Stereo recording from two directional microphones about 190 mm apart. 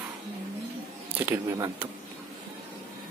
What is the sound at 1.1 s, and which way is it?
Speech, 10° right (ahead or behind).